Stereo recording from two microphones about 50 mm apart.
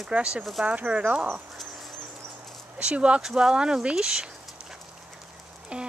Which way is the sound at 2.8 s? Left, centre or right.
Right.